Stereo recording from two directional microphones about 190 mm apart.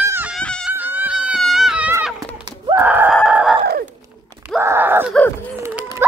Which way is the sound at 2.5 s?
20° right (ahead or behind).